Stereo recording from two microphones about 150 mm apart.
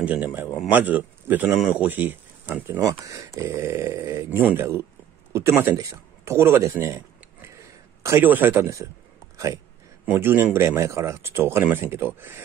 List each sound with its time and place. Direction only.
0.0 s speech: 10° right (ahead or behind)
8.0 s speech: 15° right (ahead or behind)
10.0 s speech: 15° right (ahead or behind)